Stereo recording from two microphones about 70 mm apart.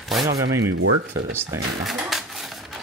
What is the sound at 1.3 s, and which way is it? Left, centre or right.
Speech, right.